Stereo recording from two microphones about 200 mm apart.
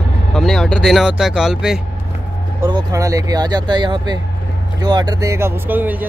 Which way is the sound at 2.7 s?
15° right (ahead or behind).